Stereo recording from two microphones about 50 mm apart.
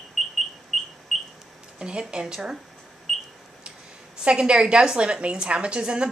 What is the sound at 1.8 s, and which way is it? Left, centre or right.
Speech, centre.